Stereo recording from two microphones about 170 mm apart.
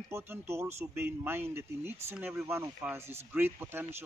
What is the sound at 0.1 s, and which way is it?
Speech, 15° right (ahead or behind).